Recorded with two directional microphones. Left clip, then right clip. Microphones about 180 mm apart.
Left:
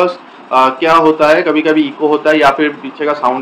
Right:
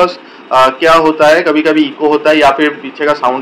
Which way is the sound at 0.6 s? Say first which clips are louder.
Right 2 dB; 5° left (ahead or behind).